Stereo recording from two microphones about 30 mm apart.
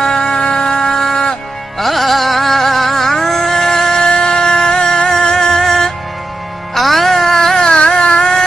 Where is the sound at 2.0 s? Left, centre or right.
Centre; by 5.1 s left.